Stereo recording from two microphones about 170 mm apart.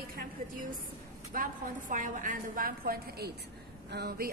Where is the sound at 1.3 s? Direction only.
55° right (ahead or behind).